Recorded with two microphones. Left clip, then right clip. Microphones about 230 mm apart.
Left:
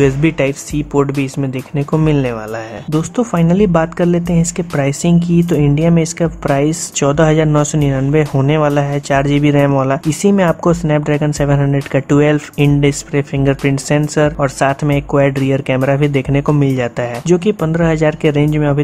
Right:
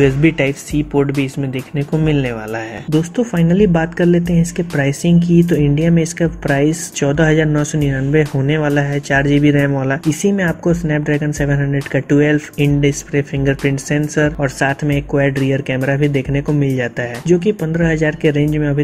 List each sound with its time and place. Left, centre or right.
0.0 s speech: centre